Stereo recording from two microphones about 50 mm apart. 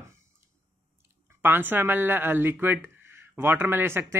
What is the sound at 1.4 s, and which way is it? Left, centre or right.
Speech, right.